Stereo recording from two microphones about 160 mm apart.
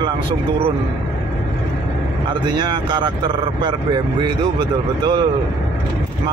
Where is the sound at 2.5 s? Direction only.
30° right (ahead or behind).